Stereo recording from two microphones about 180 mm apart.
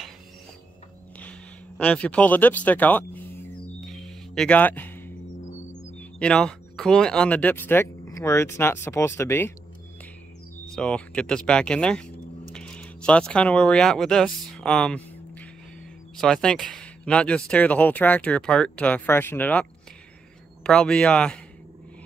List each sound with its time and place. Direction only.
1.8 s music: 5° left (ahead or behind)
5.4 s music: 40° left (ahead or behind)
5.9 s speech: 5° left (ahead or behind)
10.7 s speech: 5° left (ahead or behind)